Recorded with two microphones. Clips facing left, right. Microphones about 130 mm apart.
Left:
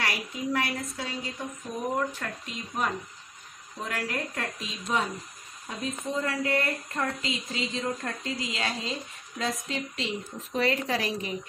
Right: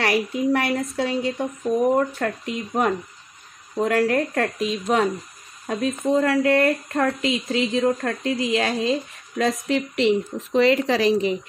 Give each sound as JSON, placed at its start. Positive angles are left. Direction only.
{"t": 0.0, "sound": "speech", "side_deg": -65}
{"t": 2.0, "sound": "speech", "side_deg": -50}
{"t": 3.7, "sound": "speech", "side_deg": -50}